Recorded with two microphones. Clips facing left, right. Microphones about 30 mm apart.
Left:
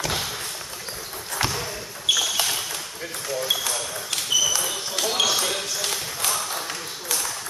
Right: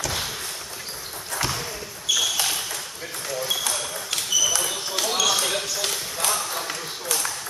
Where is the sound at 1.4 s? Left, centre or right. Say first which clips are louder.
Left 1 dB; left.